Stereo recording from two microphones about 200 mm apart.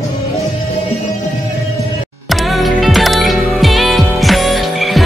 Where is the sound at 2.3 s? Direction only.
Centre (ahead or behind).